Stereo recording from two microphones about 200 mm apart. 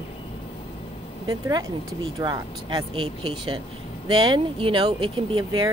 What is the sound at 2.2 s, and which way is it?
Speech, 20° right (ahead or behind).